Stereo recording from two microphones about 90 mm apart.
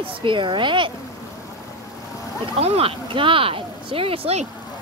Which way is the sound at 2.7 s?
80° right.